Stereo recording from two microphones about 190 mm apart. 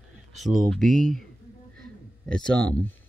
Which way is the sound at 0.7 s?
5° left (ahead or behind).